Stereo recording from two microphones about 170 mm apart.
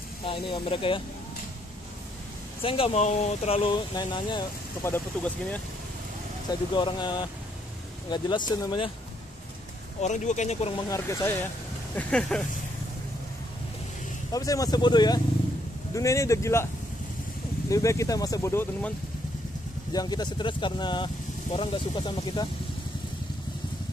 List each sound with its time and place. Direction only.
0.2 s speech: 30° left (ahead or behind)
2.6 s speech: 30° left (ahead or behind)
4.8 s speech: 10° left (ahead or behind)
6.7 s speech: 30° left (ahead or behind)
10.0 s speech: 45° left (ahead or behind)
10.9 s speech: 15° left (ahead or behind)
11.9 s speech: 5° left (ahead or behind)
14.3 s speech: 20° left (ahead or behind)
17.6 s speech: 20° left (ahead or behind)
19.9 s speech: 25° left (ahead or behind)